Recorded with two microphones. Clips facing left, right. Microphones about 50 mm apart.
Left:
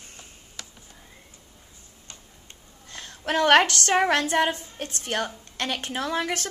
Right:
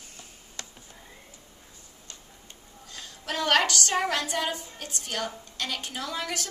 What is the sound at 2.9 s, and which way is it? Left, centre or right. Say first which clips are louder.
A woman's voice: left 7 dB; left.